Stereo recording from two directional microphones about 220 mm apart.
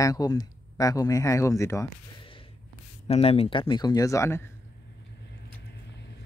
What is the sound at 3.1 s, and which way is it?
Speech, 25° left (ahead or behind).